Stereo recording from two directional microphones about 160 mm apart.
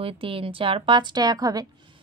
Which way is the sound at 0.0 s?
35° right (ahead or behind).